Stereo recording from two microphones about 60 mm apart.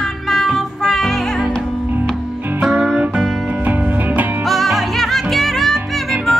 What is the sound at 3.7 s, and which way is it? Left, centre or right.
Music, right.